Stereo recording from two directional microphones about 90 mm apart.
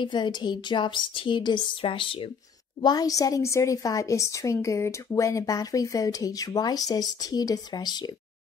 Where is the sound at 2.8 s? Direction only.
45° left (ahead or behind).